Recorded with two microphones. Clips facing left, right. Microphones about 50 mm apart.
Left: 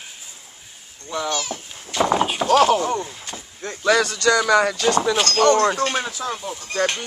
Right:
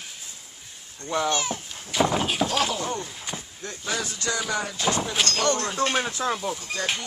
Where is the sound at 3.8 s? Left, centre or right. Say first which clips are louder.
Left 12 dB; left.